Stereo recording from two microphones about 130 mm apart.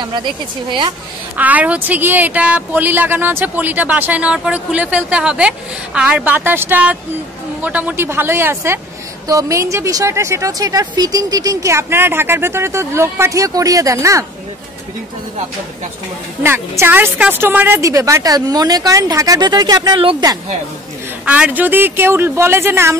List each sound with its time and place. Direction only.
0.0 s a woman's voice: 35° right (ahead or behind)
1.3 s speech: 10° right (ahead or behind)
16.4 s speech: 20° right (ahead or behind)
20.0 s speech: 45° right (ahead or behind)
21.3 s speech: 10° right (ahead or behind)